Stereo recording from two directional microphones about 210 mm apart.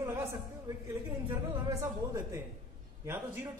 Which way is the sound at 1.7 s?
15° right (ahead or behind).